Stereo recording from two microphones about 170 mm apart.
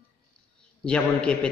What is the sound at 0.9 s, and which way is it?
Speech, 5° left (ahead or behind).